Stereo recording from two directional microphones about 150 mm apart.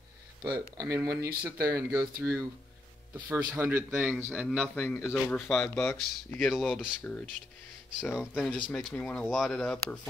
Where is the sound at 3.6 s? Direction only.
15° right (ahead or behind).